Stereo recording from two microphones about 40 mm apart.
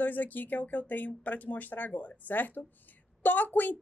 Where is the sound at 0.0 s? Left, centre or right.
Left.